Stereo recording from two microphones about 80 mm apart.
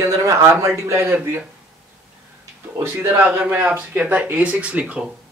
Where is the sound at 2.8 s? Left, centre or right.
Right; by 5.0 s centre.